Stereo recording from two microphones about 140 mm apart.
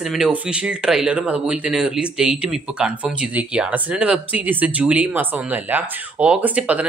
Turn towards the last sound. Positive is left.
turn(degrees=-10)  # may be behind; listen again after turning